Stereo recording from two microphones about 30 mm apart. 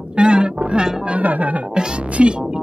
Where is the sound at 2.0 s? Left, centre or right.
Right.